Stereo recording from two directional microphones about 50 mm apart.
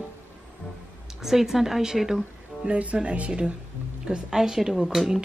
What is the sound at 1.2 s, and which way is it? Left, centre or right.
Speech, centre.